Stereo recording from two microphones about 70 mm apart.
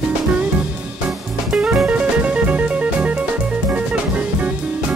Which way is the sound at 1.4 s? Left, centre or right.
Centre.